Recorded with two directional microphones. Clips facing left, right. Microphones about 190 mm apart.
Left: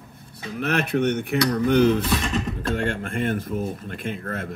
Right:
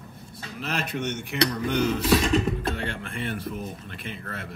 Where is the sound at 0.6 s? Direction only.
60° left (ahead or behind).